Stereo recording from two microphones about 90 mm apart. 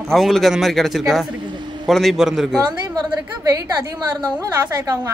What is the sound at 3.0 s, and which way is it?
Speech, 50° right (ahead or behind).